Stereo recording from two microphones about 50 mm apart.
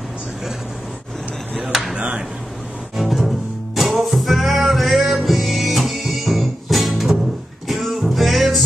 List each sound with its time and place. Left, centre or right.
1.5 s speech: centre
2.0 s speech: centre
3.0 s music: centre